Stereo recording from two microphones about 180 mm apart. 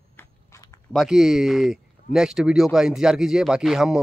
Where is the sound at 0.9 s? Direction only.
Centre (ahead or behind).